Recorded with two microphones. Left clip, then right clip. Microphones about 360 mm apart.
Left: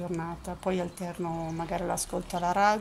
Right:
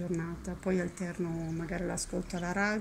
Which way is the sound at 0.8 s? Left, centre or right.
Left.